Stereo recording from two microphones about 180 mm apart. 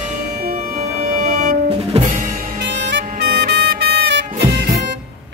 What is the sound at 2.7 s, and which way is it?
Music, 70° right (ahead or behind).